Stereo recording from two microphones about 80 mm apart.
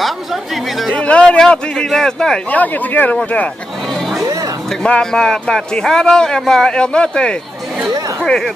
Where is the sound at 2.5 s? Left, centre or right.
Left.